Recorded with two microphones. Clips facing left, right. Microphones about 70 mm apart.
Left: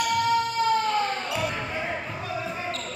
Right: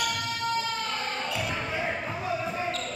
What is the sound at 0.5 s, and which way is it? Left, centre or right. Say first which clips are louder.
Basketball bounce: left 7 dB; left.